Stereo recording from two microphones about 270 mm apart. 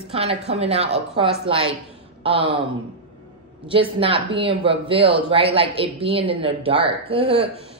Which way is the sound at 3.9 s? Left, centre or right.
Centre.